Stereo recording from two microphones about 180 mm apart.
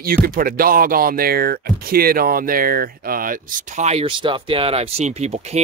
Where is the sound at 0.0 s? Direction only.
55° right (ahead or behind).